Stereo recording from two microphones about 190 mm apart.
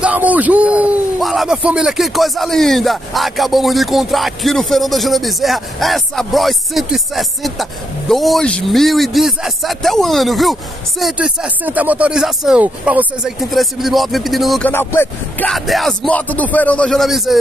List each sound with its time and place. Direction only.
0.0 s speech: 10° right (ahead or behind)
14.7 s speech: 10° left (ahead or behind)